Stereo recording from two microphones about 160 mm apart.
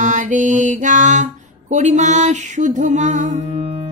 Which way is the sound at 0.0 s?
50° right (ahead or behind).